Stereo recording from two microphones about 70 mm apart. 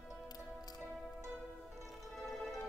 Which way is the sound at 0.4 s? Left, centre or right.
Centre.